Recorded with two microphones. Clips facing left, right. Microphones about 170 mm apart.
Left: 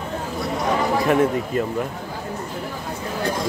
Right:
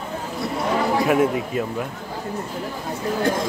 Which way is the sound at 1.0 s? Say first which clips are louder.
Even; 5° right (ahead or behind).